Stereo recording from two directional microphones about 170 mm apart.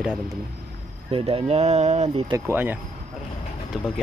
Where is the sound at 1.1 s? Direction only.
35° right (ahead or behind).